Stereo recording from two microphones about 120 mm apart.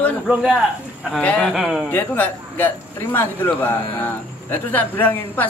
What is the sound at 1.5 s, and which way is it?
Speech, 5° right (ahead or behind).